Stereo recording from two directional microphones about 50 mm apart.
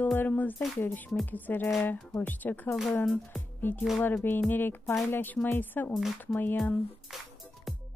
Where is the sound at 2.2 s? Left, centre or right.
Left.